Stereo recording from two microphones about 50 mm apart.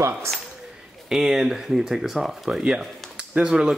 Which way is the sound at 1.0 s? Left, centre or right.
Centre.